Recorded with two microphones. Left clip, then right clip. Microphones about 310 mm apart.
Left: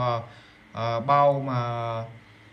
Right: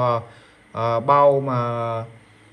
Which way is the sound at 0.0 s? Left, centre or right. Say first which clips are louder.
Right 6 dB; centre.